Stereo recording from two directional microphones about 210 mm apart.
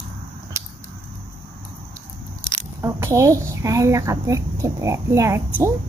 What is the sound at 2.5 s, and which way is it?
A child's voice, 15° right (ahead or behind).